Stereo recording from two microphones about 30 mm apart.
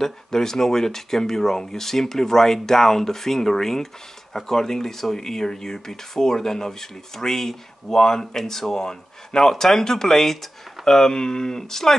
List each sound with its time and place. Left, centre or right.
0.0 s speech: centre